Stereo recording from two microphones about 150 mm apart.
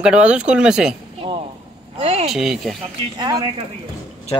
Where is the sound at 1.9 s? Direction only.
45° right (ahead or behind).